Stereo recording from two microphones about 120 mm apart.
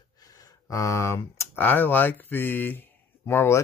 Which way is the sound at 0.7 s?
25° left (ahead or behind).